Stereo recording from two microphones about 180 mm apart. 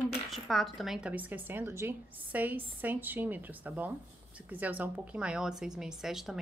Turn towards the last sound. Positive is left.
turn(degrees=0)  # may be behind; listen again after turning